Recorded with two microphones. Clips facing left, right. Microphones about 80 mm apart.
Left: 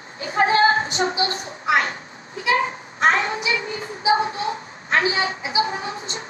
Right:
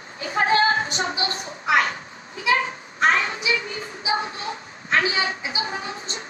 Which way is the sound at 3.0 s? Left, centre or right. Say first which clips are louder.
Left 1 dB; left.